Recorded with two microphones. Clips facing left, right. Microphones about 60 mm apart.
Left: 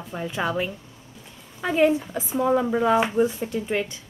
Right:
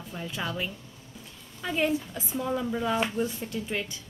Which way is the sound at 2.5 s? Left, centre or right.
Left.